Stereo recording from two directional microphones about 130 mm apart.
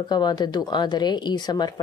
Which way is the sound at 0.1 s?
30° left (ahead or behind).